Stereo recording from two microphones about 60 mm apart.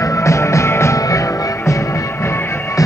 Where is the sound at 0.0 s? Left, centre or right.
Left.